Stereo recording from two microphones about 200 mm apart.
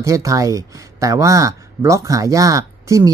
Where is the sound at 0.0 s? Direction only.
15° right (ahead or behind).